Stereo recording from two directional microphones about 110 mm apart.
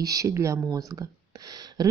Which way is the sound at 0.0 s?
30° right (ahead or behind).